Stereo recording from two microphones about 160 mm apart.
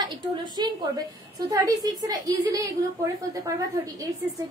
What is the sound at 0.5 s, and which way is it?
A woman's voice, 25° right (ahead or behind).